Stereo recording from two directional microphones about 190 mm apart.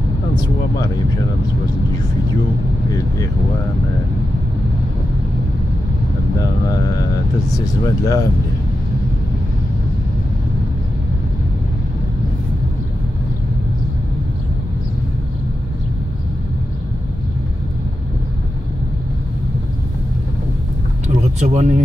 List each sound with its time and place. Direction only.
7.5 s speech: 20° left (ahead or behind)
21.1 s speech: 35° right (ahead or behind)